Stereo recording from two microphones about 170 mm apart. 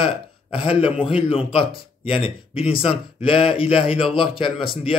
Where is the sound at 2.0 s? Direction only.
35° left (ahead or behind).